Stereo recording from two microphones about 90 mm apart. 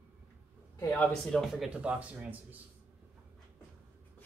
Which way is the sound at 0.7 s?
20° left (ahead or behind).